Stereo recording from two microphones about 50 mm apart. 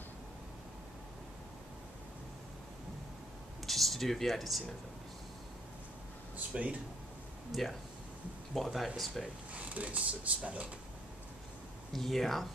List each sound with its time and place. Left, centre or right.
3.6 s speech: centre
6.3 s speech: right
7.5 s speech: centre
9.5 s speech: right
11.9 s speech: centre